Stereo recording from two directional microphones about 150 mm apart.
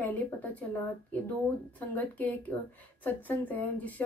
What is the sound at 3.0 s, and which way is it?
A woman's voice, 10° left (ahead or behind).